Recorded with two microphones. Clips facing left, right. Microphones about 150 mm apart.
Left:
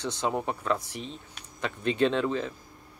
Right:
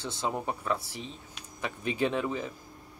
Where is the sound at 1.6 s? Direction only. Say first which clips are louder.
Left 4 dB; 10° right (ahead or behind).